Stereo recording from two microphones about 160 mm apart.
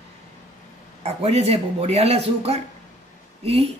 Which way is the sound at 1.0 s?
40° right (ahead or behind).